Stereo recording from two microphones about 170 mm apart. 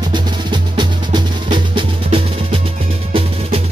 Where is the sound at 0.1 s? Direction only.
25° right (ahead or behind).